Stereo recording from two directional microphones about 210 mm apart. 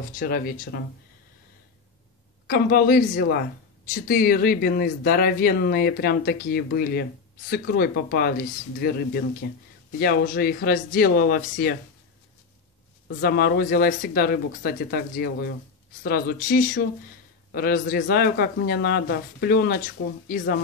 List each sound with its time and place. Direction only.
0.1 s speech: 45° left (ahead or behind)
2.4 s speech: 45° left (ahead or behind)
13.2 s speech: 50° left (ahead or behind)